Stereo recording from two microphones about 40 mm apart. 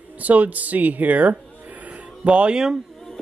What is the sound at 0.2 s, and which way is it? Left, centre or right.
Speech, right.